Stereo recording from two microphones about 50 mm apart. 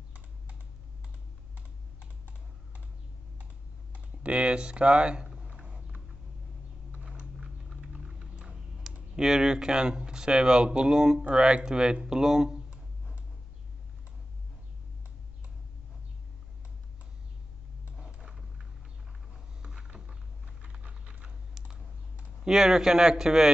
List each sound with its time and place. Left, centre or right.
2.0 s computer keyboard: right
3.9 s typing: right
6.9 s a sound: right
9.1 s speech: centre
18.2 s a sound: centre
21.6 s computer keyboard: centre
22.5 s speech: centre